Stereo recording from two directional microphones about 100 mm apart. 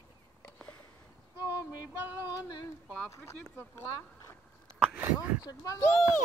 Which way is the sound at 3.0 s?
30° left (ahead or behind).